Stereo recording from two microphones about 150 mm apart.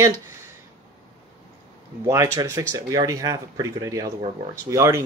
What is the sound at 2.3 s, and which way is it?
Speech, 25° right (ahead or behind).